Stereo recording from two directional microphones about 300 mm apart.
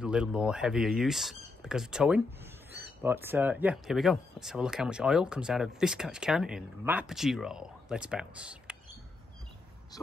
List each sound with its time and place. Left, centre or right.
0.0 s speech: centre